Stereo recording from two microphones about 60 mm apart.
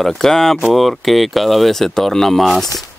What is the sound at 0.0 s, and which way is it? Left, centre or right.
Speech, centre.